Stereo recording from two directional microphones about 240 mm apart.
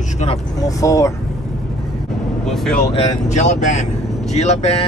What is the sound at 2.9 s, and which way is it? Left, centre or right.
Speech, left.